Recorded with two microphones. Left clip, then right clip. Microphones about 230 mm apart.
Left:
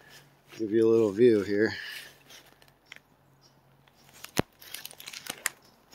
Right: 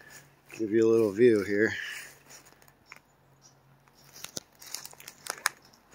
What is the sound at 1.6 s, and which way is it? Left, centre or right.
Speech, centre.